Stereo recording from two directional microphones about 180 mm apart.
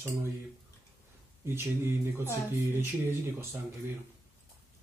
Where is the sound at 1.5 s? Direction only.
15° right (ahead or behind).